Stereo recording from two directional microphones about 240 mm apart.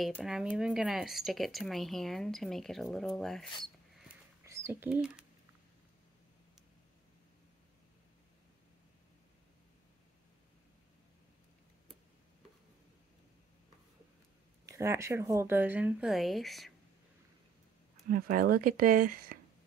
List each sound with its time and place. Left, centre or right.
0.0 s speech: centre
4.5 s speech: centre
14.7 s speech: centre
18.0 s speech: right